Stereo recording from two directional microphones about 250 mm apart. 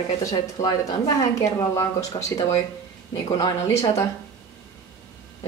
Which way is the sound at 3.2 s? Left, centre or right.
Centre.